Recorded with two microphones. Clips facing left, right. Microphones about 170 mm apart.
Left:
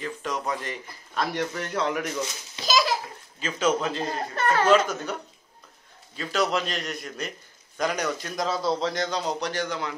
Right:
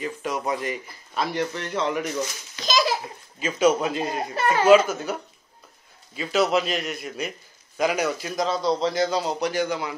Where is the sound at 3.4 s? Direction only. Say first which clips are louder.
Right 4 dB; 10° right (ahead or behind).